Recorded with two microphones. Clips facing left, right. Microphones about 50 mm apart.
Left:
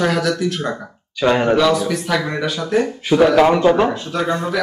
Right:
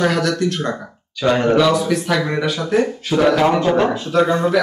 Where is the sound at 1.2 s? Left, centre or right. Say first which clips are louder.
Even; centre.